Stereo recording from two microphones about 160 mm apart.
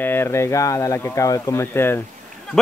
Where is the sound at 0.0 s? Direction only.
15° left (ahead or behind).